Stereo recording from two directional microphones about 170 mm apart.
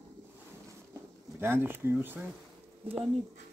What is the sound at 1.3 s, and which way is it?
Speech, 15° right (ahead or behind).